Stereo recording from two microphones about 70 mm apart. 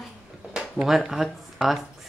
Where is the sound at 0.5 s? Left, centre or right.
Centre.